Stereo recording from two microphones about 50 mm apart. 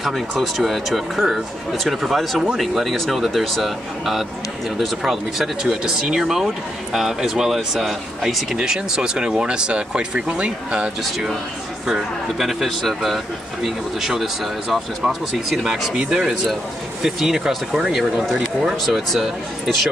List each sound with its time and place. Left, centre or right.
0.6 s speech: centre; by 10.9 s right
11.9 s speech: centre
16.0 s speech: centre